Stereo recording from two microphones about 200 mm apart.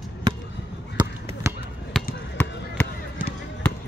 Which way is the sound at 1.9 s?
5° left (ahead or behind).